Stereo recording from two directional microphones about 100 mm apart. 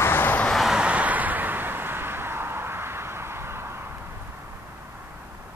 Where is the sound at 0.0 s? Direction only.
20° left (ahead or behind).